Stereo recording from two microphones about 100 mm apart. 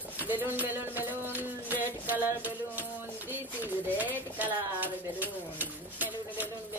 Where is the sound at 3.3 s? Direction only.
20° right (ahead or behind).